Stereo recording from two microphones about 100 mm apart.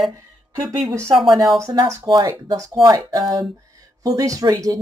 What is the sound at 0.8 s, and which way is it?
Speech, 30° right (ahead or behind).